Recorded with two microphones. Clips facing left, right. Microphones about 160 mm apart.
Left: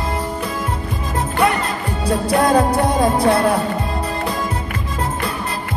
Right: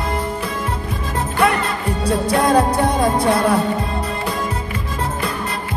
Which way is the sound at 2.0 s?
30° left (ahead or behind).